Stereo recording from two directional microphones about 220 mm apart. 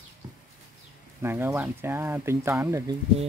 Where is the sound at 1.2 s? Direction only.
10° right (ahead or behind).